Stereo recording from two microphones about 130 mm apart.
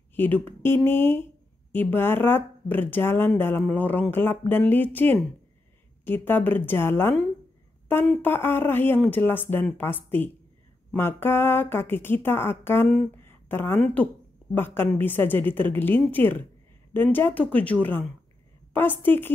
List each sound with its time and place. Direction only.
0.1 s speech: 15° left (ahead or behind)
13.2 s a sound: 15° left (ahead or behind)
14.5 s speech: 15° left (ahead or behind)